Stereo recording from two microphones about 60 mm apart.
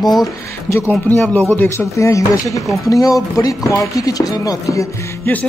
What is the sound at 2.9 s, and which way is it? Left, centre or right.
Speech, left.